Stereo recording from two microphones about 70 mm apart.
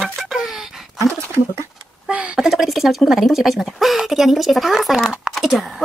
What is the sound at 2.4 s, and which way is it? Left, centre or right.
Speech, centre.